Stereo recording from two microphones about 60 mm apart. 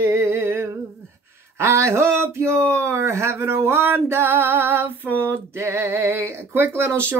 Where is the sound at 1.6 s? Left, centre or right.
Right.